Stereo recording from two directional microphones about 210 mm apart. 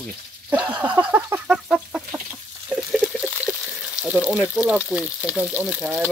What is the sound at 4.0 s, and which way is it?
Speech, 5° right (ahead or behind).